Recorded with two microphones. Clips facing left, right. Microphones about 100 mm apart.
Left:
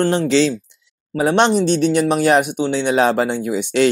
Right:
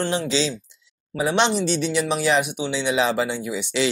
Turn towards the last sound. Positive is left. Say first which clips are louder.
# left 7 dB
turn(degrees=50)  # may be behind; listen again after turning